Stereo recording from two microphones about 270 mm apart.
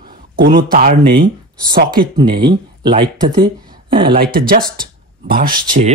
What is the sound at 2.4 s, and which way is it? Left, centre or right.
Speech, centre.